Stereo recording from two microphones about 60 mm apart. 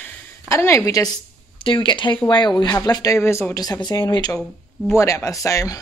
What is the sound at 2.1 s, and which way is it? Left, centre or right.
Speech, left.